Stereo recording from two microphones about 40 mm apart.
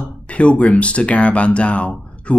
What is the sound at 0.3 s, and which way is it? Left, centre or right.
Speech, left.